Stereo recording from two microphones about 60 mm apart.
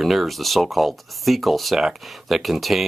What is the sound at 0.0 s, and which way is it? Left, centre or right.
Speech, centre.